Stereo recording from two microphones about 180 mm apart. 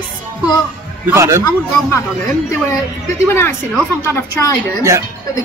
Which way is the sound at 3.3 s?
15° left (ahead or behind).